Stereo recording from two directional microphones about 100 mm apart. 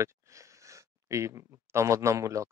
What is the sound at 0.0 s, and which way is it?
Speech, 30° right (ahead or behind).